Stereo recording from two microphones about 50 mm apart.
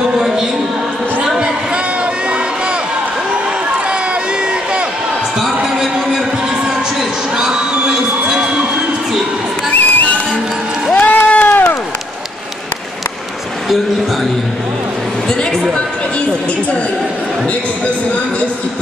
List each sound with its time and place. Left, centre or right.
7.3 s crowd: centre
9.7 s music: left
11.0 s run: left